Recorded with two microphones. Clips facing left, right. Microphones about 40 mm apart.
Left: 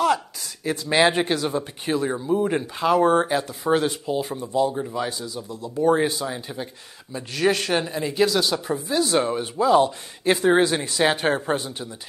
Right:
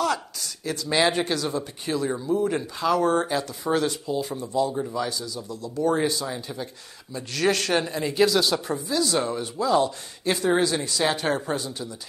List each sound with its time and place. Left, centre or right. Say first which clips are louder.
0.0 s speech: left 4 dB; left
7.3 s speech: left 1 dB; centre
8.8 s speech: left 5 dB; left